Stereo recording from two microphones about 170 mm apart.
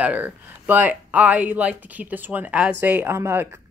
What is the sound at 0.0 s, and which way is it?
Speech, 10° right (ahead or behind).